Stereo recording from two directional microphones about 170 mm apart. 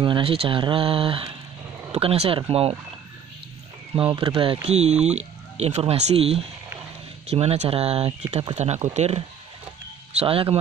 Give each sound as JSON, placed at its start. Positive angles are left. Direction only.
{"t": 0.0, "sound": "speech", "side_deg": -30}
{"t": 4.1, "sound": "speech", "side_deg": -30}